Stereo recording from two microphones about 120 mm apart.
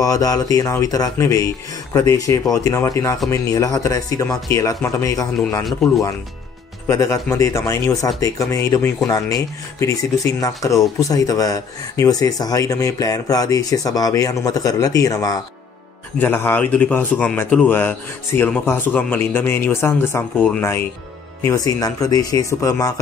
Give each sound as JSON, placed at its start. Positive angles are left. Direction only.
{"t": 0.0, "sound": "speech", "side_deg": 30}
{"t": 6.9, "sound": "speech", "side_deg": 30}
{"t": 16.2, "sound": "a man's voice", "side_deg": 15}
{"t": 21.4, "sound": "speech", "side_deg": 25}